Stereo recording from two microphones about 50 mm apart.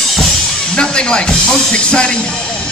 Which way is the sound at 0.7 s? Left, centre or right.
Centre.